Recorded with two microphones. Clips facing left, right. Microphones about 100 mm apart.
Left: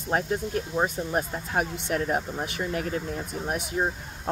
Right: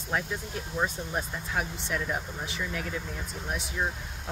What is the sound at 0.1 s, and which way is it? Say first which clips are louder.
Speech: left 6 dB; 45° left (ahead or behind).